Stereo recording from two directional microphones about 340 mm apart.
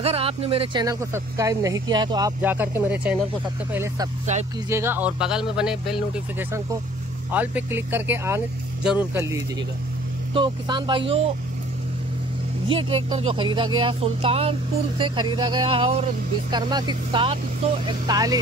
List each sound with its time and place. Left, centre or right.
0.0 s speech: centre
4.3 s speech: right
4.6 s speech: centre
12.6 s speech: centre